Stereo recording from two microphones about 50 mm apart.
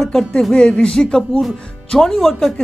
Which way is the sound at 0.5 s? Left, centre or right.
Centre.